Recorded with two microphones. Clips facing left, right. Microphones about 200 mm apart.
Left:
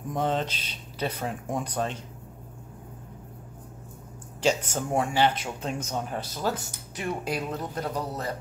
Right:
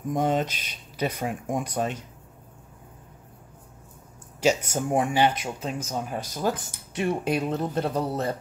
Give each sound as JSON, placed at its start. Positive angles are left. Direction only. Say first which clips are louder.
{"t": 0.1, "sound": "speech", "louder": "right 3 dB", "side_deg": -10}
{"t": 4.4, "sound": "speech", "louder": "right 2 dB", "side_deg": -10}